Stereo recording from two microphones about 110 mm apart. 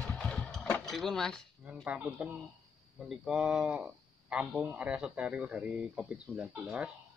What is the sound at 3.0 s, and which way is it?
Speech, centre (ahead or behind).